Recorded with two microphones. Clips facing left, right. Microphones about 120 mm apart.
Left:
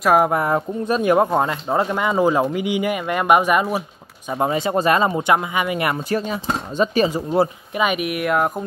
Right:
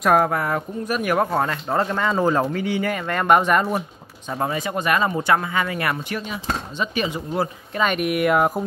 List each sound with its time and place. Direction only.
0.0 s speech: 10° left (ahead or behind)
0.3 s speech: 25° left (ahead or behind); by 3.8 s 10° left (ahead or behind)
4.3 s speech: 20° left (ahead or behind)
6.0 s speech: 40° left (ahead or behind)
7.7 s speech: 5° left (ahead or behind)